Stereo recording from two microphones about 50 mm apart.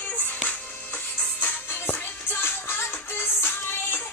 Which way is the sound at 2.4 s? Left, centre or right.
Left.